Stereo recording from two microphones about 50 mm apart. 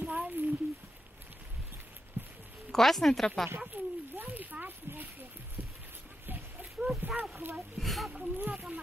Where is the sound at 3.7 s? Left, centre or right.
Right.